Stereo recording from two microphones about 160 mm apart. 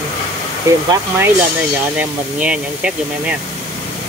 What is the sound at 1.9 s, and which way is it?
Speech, 5° right (ahead or behind).